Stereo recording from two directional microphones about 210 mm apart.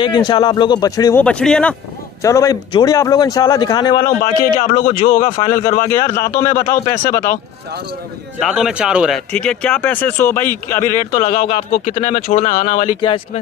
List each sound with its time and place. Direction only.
0.0 s speech: 20° left (ahead or behind)
1.2 s a man's voice: 5° left (ahead or behind)
2.2 s a man's voice: 15° left (ahead or behind)
4.0 s speech: 40° left (ahead or behind)
5.5 s a man's voice: 15° left (ahead or behind)
8.4 s a man's voice: 5° right (ahead or behind)
11.1 s speech: 20° left (ahead or behind)
11.8 s speech: 35° left (ahead or behind)